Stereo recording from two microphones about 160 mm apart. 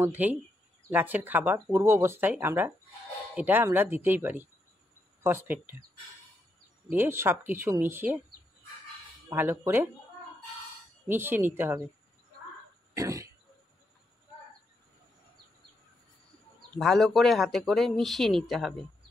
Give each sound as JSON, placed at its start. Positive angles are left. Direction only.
{"t": 0.0, "sound": "speech", "side_deg": -10}
{"t": 6.9, "sound": "speech", "side_deg": -15}
{"t": 9.3, "sound": "speech", "side_deg": -15}
{"t": 11.1, "sound": "speech", "side_deg": -15}
{"t": 12.9, "sound": "a sound", "side_deg": -20}
{"t": 16.7, "sound": "speech", "side_deg": 5}